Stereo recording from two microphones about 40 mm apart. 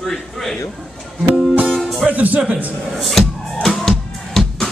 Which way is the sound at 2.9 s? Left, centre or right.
Centre.